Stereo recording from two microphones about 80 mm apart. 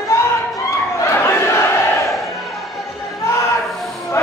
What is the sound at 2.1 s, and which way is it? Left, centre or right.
Crowd, centre.